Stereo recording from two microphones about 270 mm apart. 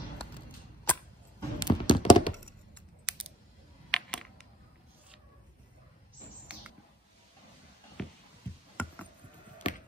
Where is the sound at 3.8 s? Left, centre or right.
Centre.